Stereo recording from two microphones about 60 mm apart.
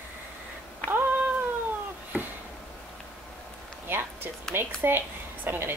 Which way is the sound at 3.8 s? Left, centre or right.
Right.